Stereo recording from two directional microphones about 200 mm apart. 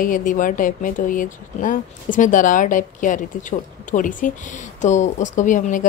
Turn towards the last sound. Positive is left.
turn(degrees=40)  # may be behind; listen again after turning